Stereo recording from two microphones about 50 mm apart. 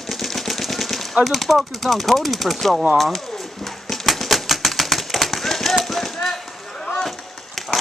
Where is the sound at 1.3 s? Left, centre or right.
Centre.